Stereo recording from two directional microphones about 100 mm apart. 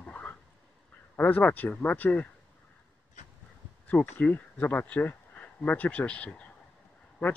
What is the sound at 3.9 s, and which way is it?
Speech, 15° left (ahead or behind).